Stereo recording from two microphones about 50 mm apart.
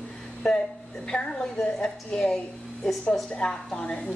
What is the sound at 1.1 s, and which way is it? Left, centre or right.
A woman's voice, centre.